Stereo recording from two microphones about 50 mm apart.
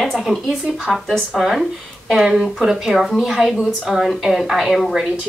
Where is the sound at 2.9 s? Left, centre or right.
Centre.